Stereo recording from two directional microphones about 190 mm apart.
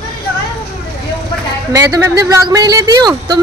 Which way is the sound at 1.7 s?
15° right (ahead or behind).